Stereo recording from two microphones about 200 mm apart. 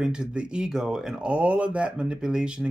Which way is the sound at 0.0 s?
5° right (ahead or behind).